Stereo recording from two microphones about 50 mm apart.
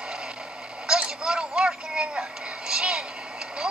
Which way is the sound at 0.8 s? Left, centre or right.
Centre.